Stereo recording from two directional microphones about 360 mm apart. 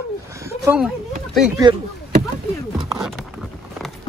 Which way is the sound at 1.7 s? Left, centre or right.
Centre.